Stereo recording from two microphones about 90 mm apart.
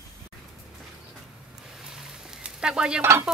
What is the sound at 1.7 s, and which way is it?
Stir, 5° right (ahead or behind).